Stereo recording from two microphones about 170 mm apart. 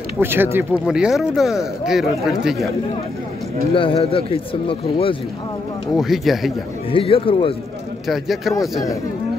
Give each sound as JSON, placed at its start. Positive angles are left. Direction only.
{"t": 0.2, "sound": "speech", "side_deg": -15}
{"t": 3.7, "sound": "speech", "side_deg": 30}
{"t": 5.9, "sound": "speech", "side_deg": 0}
{"t": 6.9, "sound": "speech", "side_deg": 30}
{"t": 8.1, "sound": "speech", "side_deg": 0}